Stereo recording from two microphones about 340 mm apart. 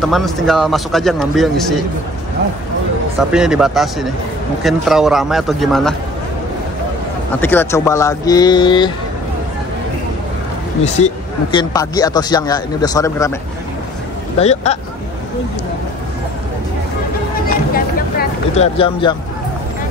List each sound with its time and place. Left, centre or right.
0.0 s a man's voice: centre
3.2 s a man's voice: centre
7.3 s a man's voice: centre
11.5 s a man's voice: centre
14.4 s speech: centre
17.7 s a sound: left